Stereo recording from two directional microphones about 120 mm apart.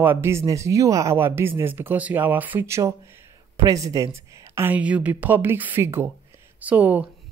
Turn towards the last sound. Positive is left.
turn(degrees=-15)  # may be behind; listen again after turning